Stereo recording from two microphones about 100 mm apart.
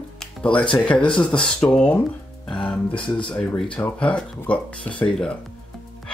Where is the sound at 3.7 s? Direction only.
10° left (ahead or behind).